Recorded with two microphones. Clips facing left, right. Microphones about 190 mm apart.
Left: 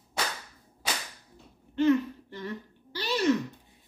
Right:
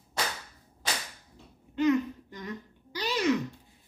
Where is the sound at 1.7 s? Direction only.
15° right (ahead or behind).